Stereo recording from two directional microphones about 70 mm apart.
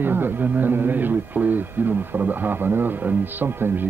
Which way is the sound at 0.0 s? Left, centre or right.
Right.